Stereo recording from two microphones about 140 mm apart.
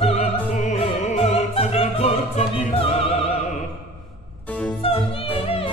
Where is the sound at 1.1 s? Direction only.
45° left (ahead or behind).